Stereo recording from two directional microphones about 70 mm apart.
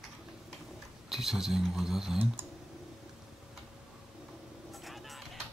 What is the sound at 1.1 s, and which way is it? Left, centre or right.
Speech, centre.